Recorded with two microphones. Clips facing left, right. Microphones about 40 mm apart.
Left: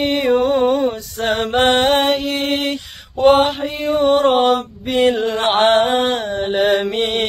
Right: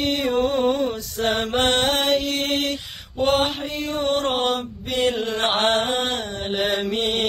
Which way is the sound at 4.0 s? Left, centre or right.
Centre.